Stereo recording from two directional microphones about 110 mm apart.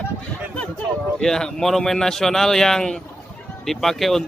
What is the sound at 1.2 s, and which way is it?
Speech, 5° left (ahead or behind).